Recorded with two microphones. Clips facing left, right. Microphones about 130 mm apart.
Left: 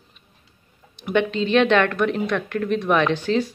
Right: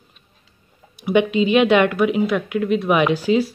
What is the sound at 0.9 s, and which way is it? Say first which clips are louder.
A woman's voice: right 4 dB; 10° right (ahead or behind).